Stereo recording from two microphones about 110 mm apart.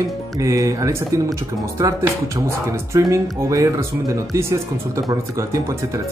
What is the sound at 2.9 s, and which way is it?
Speech, 30° right (ahead or behind).